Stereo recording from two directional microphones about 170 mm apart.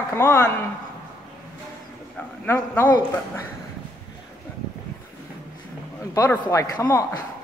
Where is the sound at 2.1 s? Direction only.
10° left (ahead or behind).